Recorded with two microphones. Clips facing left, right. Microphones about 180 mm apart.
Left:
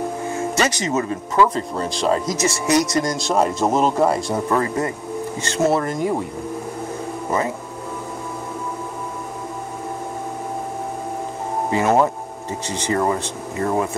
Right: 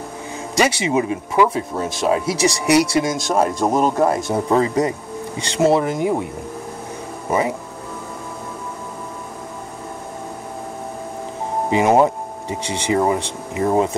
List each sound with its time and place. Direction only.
0.6 s speech: 10° right (ahead or behind)
4.3 s speech: 20° right (ahead or behind)
5.9 s speech: 5° right (ahead or behind)
7.2 s speech: 15° right (ahead or behind)
11.7 s speech: 15° right (ahead or behind)